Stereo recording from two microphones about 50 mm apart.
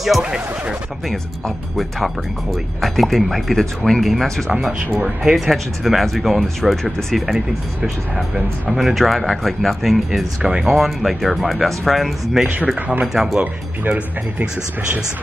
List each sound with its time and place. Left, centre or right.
0.2 s speech: centre
1.8 s speech: centre
7.2 s speech: centre
10.4 s speech: centre
13.4 s speech: right